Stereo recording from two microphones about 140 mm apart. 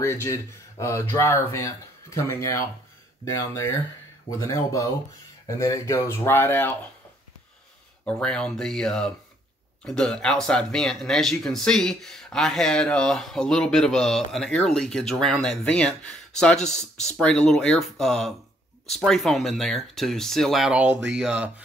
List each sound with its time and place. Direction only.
0.0 s speech: 20° left (ahead or behind)
4.3 s speech: 20° left (ahead or behind)
8.0 s speech: 5° left (ahead or behind)